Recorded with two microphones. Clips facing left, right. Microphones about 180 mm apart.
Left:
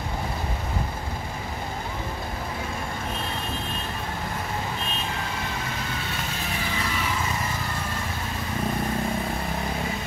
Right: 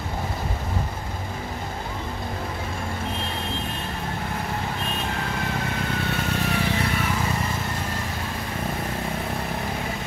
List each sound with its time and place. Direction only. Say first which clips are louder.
6.0 s vehicle: right 6 dB; 65° right (ahead or behind)